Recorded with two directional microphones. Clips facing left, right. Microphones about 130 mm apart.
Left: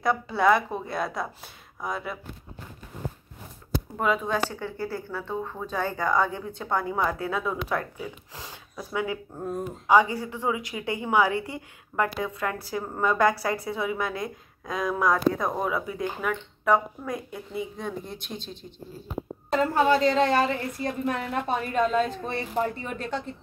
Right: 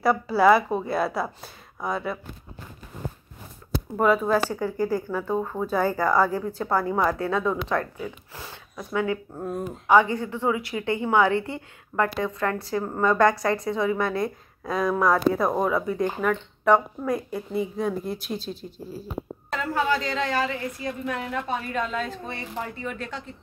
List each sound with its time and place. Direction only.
0.0 s a woman's voice: 5° right (ahead or behind)
4.0 s a woman's voice: 5° right (ahead or behind)
19.5 s a woman's voice: 30° left (ahead or behind)